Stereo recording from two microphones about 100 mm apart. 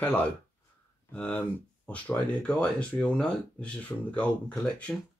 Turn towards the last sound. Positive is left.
turn(degrees=10)  # may be behind; listen again after turning